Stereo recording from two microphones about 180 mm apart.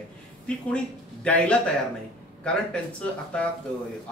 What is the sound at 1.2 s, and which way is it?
A man's voice, 5° left (ahead or behind).